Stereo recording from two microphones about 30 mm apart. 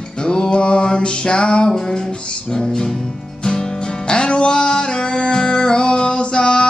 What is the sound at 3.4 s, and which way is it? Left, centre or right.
Music, left.